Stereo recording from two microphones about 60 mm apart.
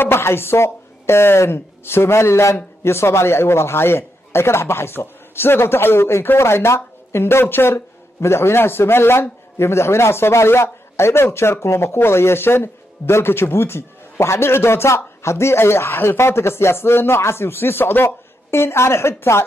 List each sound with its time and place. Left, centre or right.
0.0 s speech: left